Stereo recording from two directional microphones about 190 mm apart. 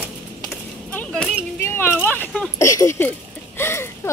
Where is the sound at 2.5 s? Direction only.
15° left (ahead or behind).